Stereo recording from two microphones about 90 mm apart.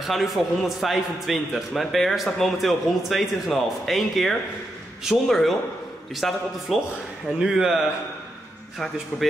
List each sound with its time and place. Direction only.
0.0 s a man's voice: centre (ahead or behind)